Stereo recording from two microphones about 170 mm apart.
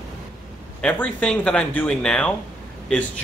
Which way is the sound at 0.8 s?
5° left (ahead or behind).